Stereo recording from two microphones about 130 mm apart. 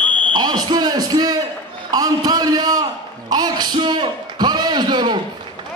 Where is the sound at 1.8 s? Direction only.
30° right (ahead or behind).